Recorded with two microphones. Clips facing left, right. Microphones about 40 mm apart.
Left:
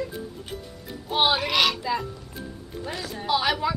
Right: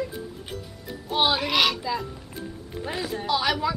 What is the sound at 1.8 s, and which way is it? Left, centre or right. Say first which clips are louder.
Speech: left 1 dB; centre.